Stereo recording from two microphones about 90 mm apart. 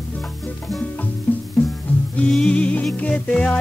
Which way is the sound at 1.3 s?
20° left (ahead or behind).